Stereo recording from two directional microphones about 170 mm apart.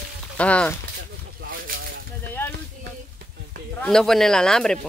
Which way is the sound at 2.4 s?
10° left (ahead or behind).